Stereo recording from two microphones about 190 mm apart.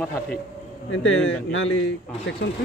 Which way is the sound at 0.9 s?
90° left.